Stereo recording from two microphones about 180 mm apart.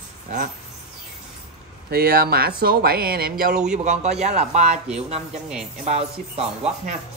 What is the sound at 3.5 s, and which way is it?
Speech, 5° right (ahead or behind).